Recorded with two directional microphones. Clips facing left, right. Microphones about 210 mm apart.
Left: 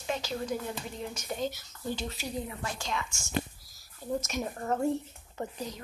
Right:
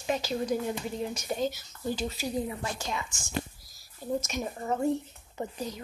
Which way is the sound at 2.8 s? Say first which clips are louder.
Even; 20° right (ahead or behind).